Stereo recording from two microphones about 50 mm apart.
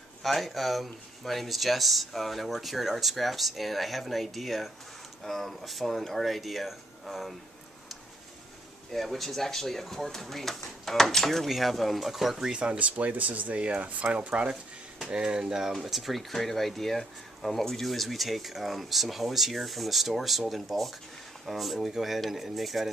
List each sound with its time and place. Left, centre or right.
0.2 s speech: centre
8.9 s speech: centre
12.5 s speech: right; by 22.8 s centre